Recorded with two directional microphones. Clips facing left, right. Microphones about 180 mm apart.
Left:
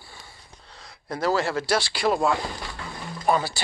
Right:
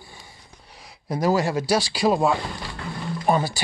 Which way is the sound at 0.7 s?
10° right (ahead or behind).